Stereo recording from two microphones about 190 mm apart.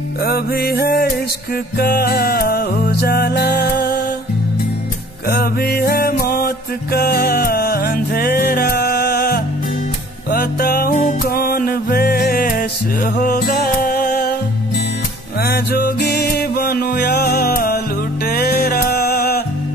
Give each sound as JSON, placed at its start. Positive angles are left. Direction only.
{"t": 0.2, "sound": "music", "side_deg": 55}
{"t": 5.3, "sound": "music", "side_deg": 55}
{"t": 15.4, "sound": "music", "side_deg": 55}